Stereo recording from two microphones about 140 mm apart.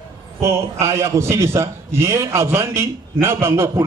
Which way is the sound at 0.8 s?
20° right (ahead or behind).